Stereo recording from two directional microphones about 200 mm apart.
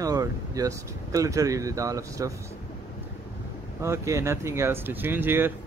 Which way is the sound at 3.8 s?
15° right (ahead or behind).